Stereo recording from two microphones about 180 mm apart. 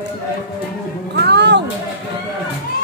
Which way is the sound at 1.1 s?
70° right (ahead or behind).